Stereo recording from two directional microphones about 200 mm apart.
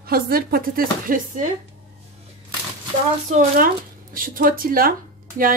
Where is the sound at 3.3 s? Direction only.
35° right (ahead or behind).